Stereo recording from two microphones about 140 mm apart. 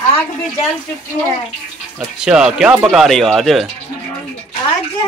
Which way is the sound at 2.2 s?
5° right (ahead or behind).